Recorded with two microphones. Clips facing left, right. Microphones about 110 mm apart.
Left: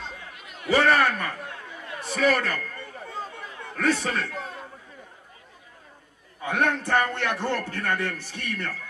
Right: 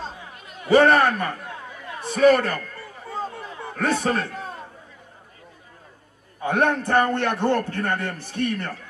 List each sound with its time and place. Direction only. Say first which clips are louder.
0.7 s a man's voice: right 5 dB; 30° right (ahead or behind)
3.7 s a man's voice: right 2 dB; 45° right (ahead or behind)
6.4 s a man's voice: right 4 dB; 35° right (ahead or behind)